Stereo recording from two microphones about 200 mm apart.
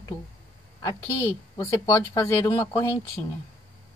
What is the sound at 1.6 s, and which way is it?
Speech, 15° left (ahead or behind).